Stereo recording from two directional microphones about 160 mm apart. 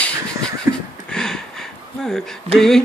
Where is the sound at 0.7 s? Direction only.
20° right (ahead or behind).